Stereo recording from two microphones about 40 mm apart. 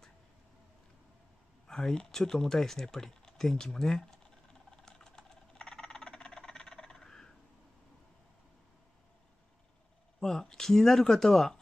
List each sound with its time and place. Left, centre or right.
1.7 s speech: centre
4.6 s a sound: centre
10.2 s speech: centre